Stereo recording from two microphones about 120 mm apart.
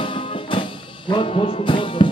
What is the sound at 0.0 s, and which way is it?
Music, 45° left (ahead or behind).